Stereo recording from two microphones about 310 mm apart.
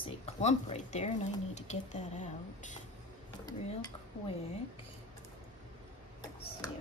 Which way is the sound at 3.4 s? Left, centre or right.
Centre.